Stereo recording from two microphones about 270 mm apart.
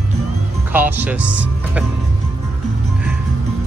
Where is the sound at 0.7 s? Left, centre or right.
Centre.